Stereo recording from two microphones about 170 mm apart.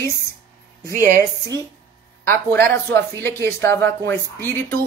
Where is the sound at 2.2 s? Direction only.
15° left (ahead or behind).